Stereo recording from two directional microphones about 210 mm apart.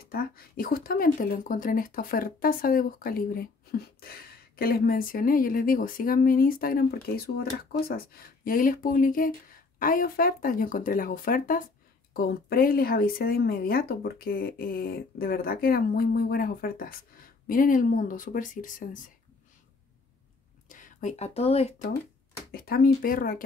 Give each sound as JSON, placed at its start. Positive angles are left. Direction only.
{"t": 0.0, "sound": "speech", "side_deg": 45}
{"t": 20.6, "sound": "speech", "side_deg": 40}
{"t": 22.5, "sound": "speech", "side_deg": 45}